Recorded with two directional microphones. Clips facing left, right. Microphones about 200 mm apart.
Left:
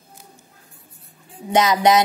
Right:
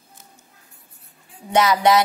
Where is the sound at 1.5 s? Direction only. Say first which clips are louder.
Left 1 dB; 20° left (ahead or behind).